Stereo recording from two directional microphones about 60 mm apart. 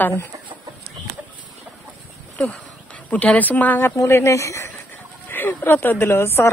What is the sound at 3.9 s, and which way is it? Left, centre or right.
Speech, left.